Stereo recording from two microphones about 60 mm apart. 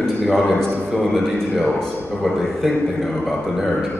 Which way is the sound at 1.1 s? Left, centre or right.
Centre.